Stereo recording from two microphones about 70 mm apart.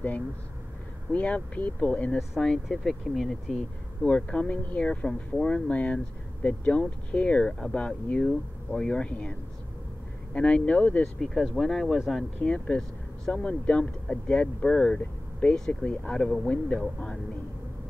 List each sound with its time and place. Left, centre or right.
1.1 s speech: centre
2.1 s speech: centre
4.0 s speech: centre
11.1 s speech: centre
12.4 s speech: centre
16.4 s speech: left